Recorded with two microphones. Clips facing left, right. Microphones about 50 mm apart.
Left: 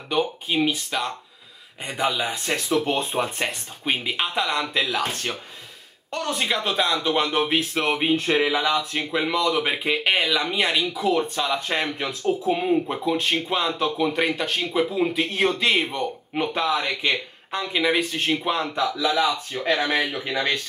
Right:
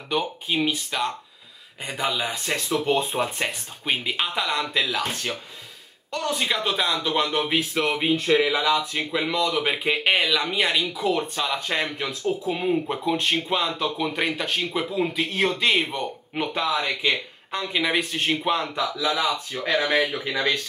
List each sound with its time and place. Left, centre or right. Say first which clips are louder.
0.1 s speech: left 2 dB; centre
8.1 s speech: right 2 dB; left
8.5 s speech: even; centre